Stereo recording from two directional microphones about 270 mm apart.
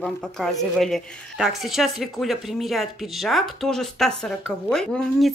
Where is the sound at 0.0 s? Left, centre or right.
Centre.